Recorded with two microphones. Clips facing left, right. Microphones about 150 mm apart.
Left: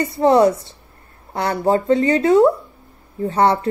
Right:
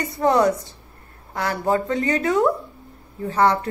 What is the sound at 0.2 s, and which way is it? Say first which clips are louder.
Speech: left 4 dB; 25° left (ahead or behind).